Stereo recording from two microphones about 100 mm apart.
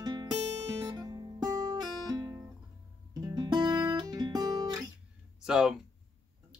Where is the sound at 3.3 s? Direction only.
45° right (ahead or behind).